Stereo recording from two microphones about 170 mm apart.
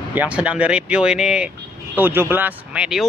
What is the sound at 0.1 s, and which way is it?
Speech, 10° right (ahead or behind).